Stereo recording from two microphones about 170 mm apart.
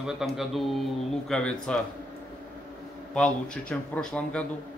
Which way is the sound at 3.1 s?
5° left (ahead or behind).